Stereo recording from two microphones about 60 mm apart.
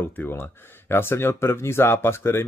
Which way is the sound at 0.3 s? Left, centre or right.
Left.